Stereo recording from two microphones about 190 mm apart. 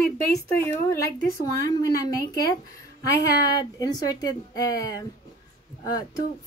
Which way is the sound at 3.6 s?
20° left (ahead or behind).